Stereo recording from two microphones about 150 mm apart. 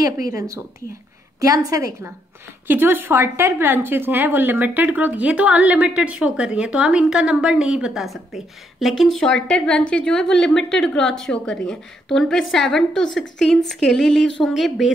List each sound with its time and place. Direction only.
0.0 s a woman's voice: 25° right (ahead or behind); by 14.9 s centre (ahead or behind)